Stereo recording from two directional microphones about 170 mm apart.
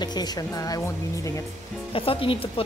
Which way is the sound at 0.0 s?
25° left (ahead or behind).